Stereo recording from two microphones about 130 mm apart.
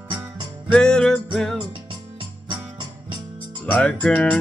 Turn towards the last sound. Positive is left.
turn(degrees=10)  # may be behind; listen again after turning